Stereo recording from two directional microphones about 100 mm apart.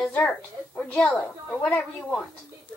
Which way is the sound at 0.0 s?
10° left (ahead or behind).